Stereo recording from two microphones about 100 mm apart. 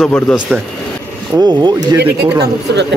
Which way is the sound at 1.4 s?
45° right (ahead or behind).